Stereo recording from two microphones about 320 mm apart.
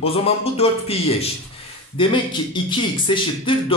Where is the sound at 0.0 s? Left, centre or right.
Centre.